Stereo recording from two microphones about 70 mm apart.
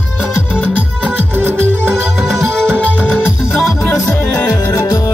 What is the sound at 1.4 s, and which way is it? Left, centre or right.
Music, right.